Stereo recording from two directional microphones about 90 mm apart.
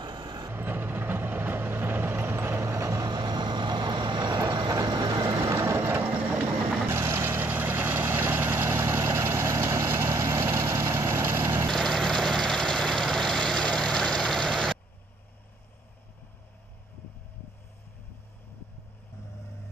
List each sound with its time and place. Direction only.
0.0 s vehicle: 55° right (ahead or behind)
0.5 s vehicle: 25° right (ahead or behind); by 4.4 s 50° right (ahead or behind)
4.6 s train: 45° right (ahead or behind)
5.4 s vehicle: 30° right (ahead or behind)
11.7 s vehicle: 5° left (ahead or behind)